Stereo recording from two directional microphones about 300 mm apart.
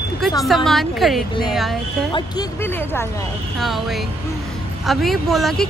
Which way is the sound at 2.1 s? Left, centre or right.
Centre.